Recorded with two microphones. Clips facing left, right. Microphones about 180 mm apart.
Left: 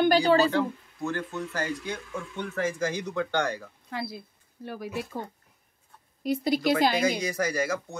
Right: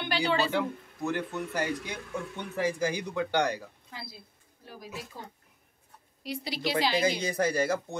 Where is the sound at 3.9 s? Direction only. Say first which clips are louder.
Left 14 dB; 65° left (ahead or behind).